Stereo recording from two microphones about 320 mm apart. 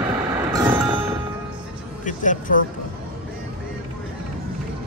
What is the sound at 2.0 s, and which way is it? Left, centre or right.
Speech, left.